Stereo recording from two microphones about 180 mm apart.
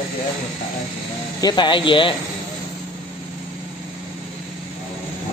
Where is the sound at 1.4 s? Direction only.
25° left (ahead or behind).